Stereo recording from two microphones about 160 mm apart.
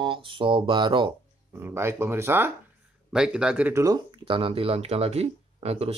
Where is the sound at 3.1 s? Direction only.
5° right (ahead or behind); by 5.9 s 40° right (ahead or behind).